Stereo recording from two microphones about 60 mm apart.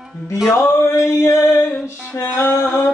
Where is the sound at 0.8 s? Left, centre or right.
Left.